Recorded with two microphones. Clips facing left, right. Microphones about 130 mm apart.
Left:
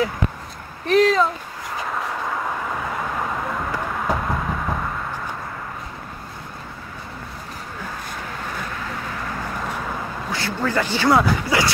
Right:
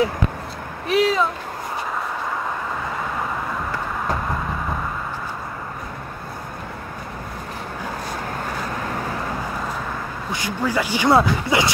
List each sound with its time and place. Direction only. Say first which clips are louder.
0.8 s speech: left 3 dB; 5° right (ahead or behind)
3.7 s vehicle: left 2 dB; 5° left (ahead or behind)
10.3 s speech: even; 15° right (ahead or behind)
11.1 s speech: right 1 dB; 25° right (ahead or behind)